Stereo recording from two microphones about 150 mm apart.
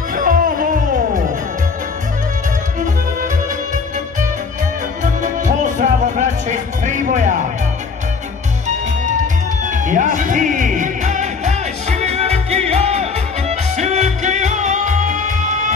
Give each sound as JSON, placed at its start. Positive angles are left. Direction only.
{"t": 0.1, "sound": "music", "side_deg": -65}
{"t": 5.2, "sound": "music", "side_deg": -55}
{"t": 9.7, "sound": "music", "side_deg": -55}